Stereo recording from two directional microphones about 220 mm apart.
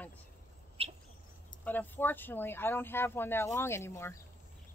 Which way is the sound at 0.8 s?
25° right (ahead or behind).